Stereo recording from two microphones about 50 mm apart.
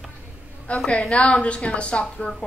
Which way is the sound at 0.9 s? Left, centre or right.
Left.